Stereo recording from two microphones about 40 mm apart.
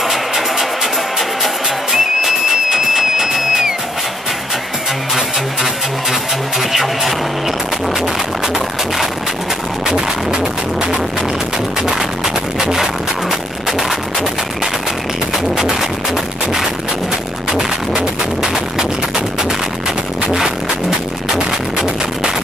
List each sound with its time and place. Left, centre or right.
0.0 s music: centre
6.6 s music: centre
9.8 s music: centre
12.5 s a sound: centre
13.7 s music: centre
15.3 s music: centre
17.5 s music: centre
20.2 s music: centre
21.5 s music: centre